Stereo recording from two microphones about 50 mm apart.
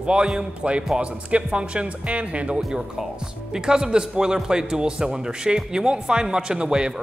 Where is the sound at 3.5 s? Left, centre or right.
Centre.